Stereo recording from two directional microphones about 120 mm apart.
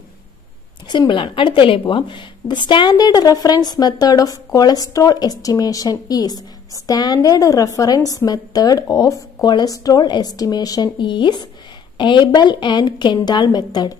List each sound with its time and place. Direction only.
0.8 s speech: 40° left (ahead or behind)